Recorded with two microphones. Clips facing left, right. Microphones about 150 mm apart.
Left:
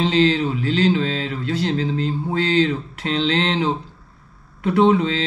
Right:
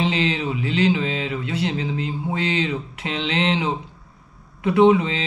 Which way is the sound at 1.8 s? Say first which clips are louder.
Left 4 dB; 35° left (ahead or behind).